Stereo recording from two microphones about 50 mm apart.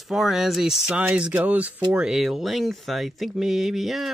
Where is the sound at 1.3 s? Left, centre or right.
Right.